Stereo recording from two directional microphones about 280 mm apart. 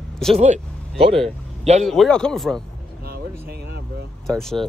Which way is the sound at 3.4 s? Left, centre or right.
Right.